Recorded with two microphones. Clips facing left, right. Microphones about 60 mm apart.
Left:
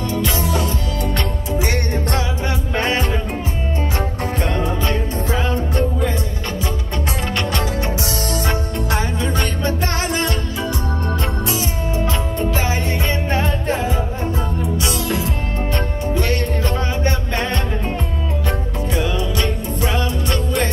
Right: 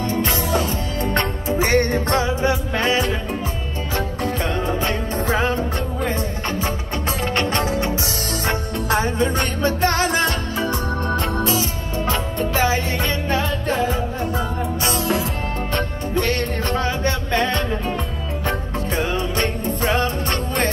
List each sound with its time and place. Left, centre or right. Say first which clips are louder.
0.1 s music: left 1 dB; right
2.7 s music: even; left
4.6 s music: left 1 dB; right
7.3 s music: right 2 dB; right
12.7 s music: even; left
14.8 s music: right 3 dB; right
16.3 s music: left 1 dB; right